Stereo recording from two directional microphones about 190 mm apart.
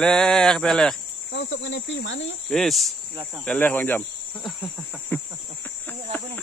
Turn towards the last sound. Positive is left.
turn(degrees=10)  # may be behind; listen again after turning